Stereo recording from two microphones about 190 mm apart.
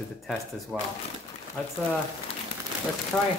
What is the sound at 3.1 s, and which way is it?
Speech, 5° left (ahead or behind).